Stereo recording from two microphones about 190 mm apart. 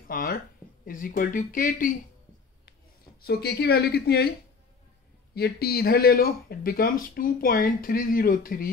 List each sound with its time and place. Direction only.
0.1 s speech: 50° left (ahead or behind)
3.2 s speech: 55° left (ahead or behind)
5.3 s speech: 55° left (ahead or behind)